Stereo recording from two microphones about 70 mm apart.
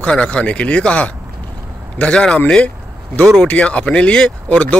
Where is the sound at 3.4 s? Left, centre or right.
Left.